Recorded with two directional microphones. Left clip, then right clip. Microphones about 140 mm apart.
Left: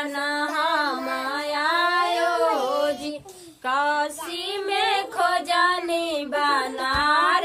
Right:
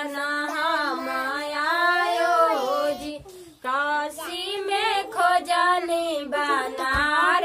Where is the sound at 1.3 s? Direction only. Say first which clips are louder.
Left 3 dB; 25° left (ahead or behind).